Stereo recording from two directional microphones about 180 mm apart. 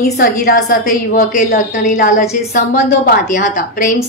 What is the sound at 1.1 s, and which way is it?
A woman's voice, 45° left (ahead or behind).